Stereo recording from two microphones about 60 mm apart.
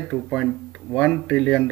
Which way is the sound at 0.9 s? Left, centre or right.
Left.